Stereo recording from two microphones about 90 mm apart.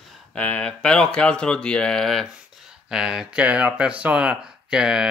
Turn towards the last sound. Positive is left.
turn(degrees=-10)  # may be behind; listen again after turning